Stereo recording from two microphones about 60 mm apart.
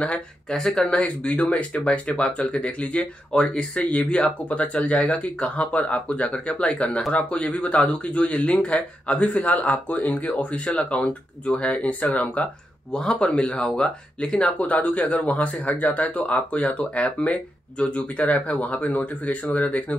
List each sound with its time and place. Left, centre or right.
0.5 s speech: centre
14.6 s speech: left